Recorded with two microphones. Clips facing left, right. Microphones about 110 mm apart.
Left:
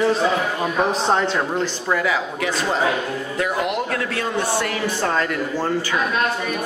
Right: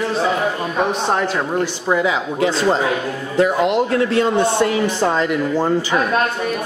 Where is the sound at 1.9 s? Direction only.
20° right (ahead or behind).